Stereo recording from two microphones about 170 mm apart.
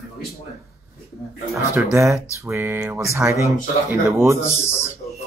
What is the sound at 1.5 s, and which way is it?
Speech, 15° right (ahead or behind).